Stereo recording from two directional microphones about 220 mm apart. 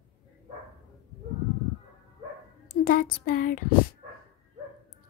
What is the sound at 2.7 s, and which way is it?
Speech, 40° left (ahead or behind).